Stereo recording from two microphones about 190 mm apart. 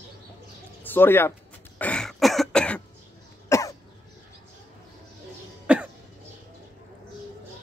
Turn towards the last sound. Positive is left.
turn(degrees=-5)  # may be behind; listen again after turning